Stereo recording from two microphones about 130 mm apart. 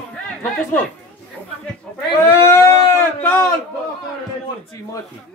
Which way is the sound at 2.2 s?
20° left (ahead or behind).